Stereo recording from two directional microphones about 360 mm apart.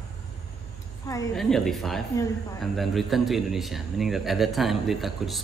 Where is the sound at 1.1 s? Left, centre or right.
Centre.